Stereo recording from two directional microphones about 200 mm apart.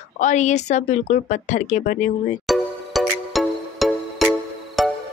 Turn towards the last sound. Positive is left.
turn(degrees=0)  # may be behind; listen again after turning